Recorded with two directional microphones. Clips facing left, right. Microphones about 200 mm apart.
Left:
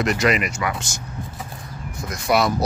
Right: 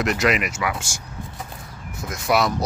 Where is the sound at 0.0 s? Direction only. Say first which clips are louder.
Left 1 dB; centre (ahead or behind).